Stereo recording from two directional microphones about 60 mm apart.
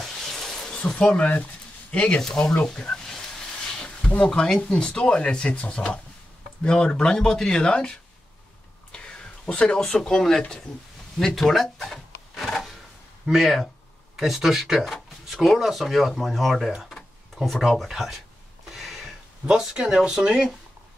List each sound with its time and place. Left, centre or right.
0.0 s a sound: centre
0.7 s speech: centre
2.2 s a sound: centre
4.3 s speech: centre
8.9 s whispering: centre
9.8 s speech: centre
11.1 s drawer open or close: centre
13.2 s speech: centre
18.8 s a sound: centre
19.4 s speech: centre